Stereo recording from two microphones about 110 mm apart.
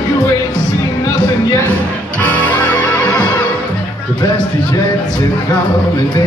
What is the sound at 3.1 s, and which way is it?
Music, 40° left (ahead or behind).